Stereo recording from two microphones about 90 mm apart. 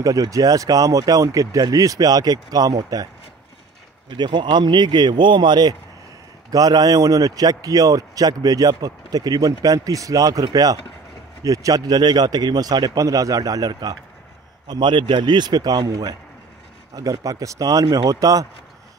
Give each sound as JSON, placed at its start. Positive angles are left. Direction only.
{"t": 0.0, "sound": "speech", "side_deg": -40}
{"t": 4.2, "sound": "a man's voice", "side_deg": -55}
{"t": 14.7, "sound": "a man's voice", "side_deg": -60}